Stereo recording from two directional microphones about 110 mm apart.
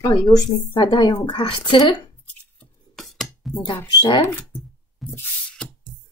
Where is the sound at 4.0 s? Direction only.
55° left (ahead or behind).